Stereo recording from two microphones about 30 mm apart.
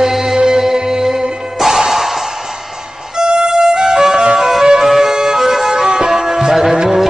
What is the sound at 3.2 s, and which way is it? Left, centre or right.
Music, right.